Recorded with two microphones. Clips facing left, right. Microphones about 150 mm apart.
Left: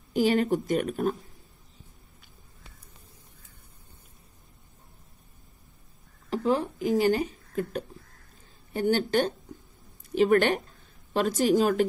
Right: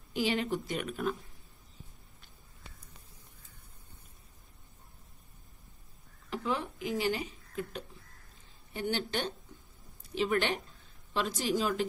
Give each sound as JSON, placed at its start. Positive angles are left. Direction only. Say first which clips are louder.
{"t": 0.1, "sound": "speech", "louder": "left 8 dB", "side_deg": 45}
{"t": 6.3, "sound": "speech", "louder": "left 8 dB", "side_deg": 40}